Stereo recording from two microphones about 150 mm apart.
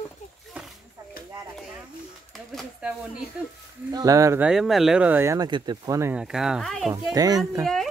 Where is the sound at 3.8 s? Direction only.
25° right (ahead or behind).